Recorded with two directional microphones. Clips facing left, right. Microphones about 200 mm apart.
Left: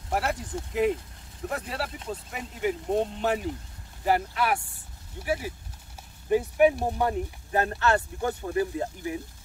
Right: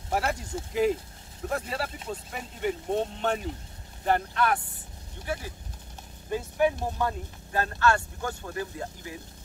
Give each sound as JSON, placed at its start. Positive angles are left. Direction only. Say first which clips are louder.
{"t": 0.1, "sound": "speech", "louder": "even", "side_deg": 0}